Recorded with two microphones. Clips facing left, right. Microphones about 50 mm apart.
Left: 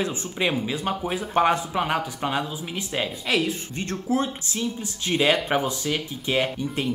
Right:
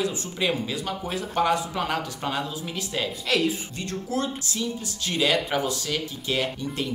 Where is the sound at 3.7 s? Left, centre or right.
Left.